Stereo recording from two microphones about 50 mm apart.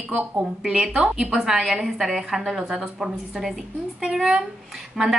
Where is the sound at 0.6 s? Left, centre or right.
Centre.